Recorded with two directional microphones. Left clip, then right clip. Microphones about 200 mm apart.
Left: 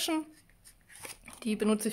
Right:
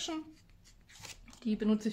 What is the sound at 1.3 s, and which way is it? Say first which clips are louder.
Speech: left 4 dB; 55° left (ahead or behind).